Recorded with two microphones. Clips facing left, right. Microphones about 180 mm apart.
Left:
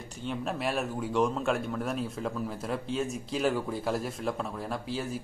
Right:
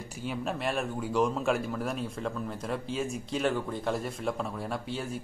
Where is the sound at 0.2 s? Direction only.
Centre (ahead or behind).